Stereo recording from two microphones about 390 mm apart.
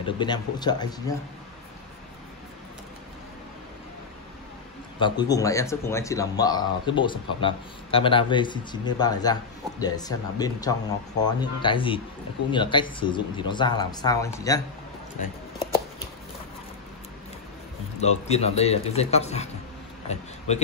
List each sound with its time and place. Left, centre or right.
0.0 s speech: centre
4.9 s speech: centre
18.0 s speech: centre